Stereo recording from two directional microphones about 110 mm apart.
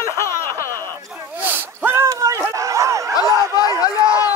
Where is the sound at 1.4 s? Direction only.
20° right (ahead or behind).